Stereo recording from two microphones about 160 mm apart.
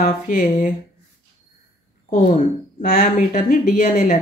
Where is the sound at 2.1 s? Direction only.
50° left (ahead or behind).